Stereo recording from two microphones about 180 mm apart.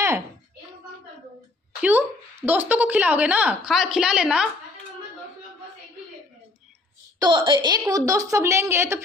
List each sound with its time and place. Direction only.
1.8 s a woman's voice: 10° right (ahead or behind)
7.2 s a woman's voice: 25° right (ahead or behind)